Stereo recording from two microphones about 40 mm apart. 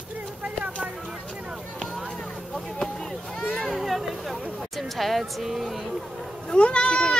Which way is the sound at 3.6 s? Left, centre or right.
Centre.